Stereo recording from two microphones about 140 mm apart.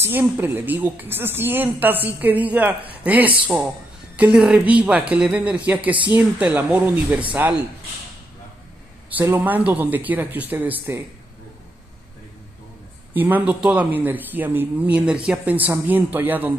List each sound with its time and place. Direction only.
0.0 s speech: 15° right (ahead or behind)
9.1 s speech: 15° right (ahead or behind)
13.1 s speech: 15° right (ahead or behind)